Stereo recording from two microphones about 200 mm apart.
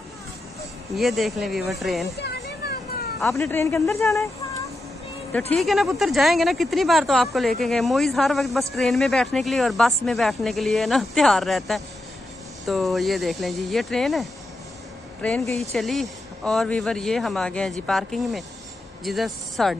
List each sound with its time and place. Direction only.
0.9 s speech: centre (ahead or behind)
2.1 s children playing: 55° left (ahead or behind)
3.3 s speech: 10° left (ahead or behind)
5.5 s speech: centre (ahead or behind)